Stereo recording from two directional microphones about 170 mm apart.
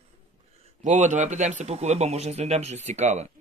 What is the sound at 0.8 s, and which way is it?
Speech, 45° right (ahead or behind).